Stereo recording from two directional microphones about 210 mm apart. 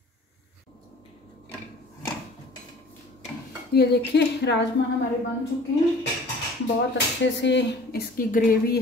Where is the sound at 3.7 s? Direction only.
50° left (ahead or behind).